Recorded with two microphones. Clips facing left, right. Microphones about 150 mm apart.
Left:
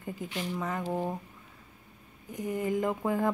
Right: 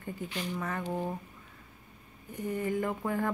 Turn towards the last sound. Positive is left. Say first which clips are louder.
# left 3 dB
turn(degrees=15)  # may be behind; listen again after turning